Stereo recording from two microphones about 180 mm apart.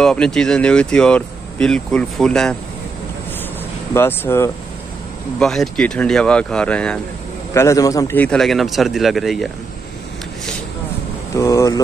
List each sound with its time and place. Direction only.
0.0 s speech: 5° left (ahead or behind)
3.9 s speech: 10° left (ahead or behind)
5.4 s speech: 5° left (ahead or behind)
7.5 s speech: 15° left (ahead or behind); by 9.5 s centre (ahead or behind)
11.3 s speech: 15° left (ahead or behind)